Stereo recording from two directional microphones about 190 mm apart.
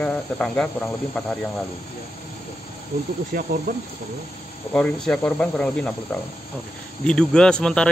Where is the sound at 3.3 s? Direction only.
50° right (ahead or behind).